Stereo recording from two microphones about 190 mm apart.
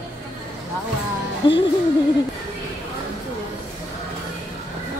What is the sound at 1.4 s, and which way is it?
Speech, 25° left (ahead or behind).